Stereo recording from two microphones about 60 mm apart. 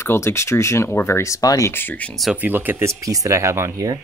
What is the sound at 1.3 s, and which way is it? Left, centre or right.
Speech, left.